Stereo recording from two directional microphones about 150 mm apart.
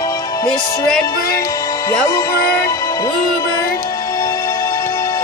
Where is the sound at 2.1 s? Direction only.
20° left (ahead or behind).